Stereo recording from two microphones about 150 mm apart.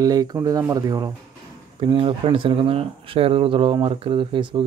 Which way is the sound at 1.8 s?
35° right (ahead or behind).